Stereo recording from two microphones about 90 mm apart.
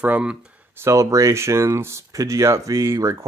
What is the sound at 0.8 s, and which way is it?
Speech, 35° right (ahead or behind).